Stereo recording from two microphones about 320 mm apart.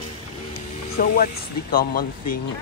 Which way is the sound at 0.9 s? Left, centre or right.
Left.